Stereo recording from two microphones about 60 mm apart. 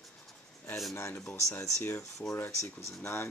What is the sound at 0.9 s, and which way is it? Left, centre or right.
Speech, left.